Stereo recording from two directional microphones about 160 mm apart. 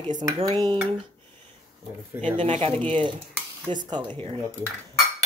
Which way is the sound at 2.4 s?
35° right (ahead or behind).